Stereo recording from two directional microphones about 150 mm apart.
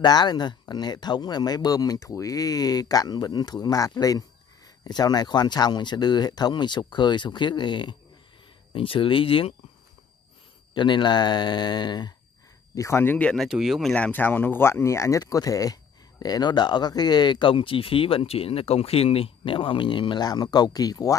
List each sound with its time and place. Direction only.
0.0 s speech: 30° left (ahead or behind)
10.7 s speech: 30° left (ahead or behind)
12.7 s speech: 20° left (ahead or behind)
13.5 s speech: 5° right (ahead or behind); by 21.2 s 25° left (ahead or behind)